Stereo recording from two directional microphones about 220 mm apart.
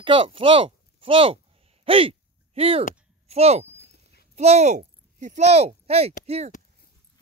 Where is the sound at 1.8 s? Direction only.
25° right (ahead or behind).